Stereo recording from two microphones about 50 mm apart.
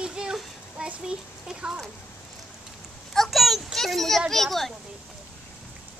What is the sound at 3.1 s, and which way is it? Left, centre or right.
A child's voice, centre.